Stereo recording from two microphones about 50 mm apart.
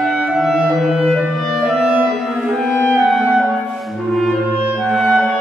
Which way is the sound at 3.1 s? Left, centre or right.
Centre.